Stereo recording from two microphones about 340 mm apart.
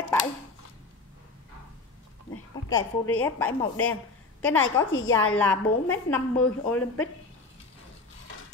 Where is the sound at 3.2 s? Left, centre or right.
Centre.